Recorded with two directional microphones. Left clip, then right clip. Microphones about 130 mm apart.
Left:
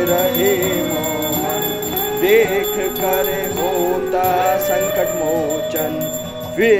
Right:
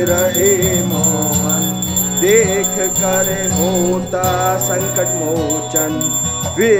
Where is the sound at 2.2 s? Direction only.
25° right (ahead or behind).